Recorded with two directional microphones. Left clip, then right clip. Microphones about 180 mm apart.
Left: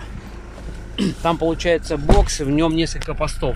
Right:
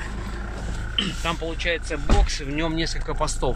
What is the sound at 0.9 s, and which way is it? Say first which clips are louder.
Speech: left 5 dB; 30° left (ahead or behind).